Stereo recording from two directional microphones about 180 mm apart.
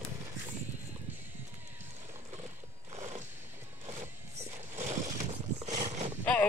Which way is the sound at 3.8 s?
40° right (ahead or behind).